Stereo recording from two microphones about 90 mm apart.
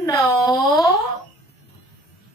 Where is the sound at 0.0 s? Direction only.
45° left (ahead or behind).